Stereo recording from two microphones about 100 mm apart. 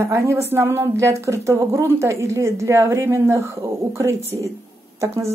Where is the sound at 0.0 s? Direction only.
25° right (ahead or behind).